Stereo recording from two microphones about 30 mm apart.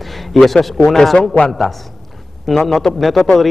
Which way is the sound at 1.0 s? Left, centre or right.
Centre.